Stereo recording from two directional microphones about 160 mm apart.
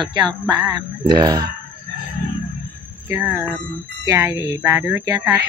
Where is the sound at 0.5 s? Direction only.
25° right (ahead or behind).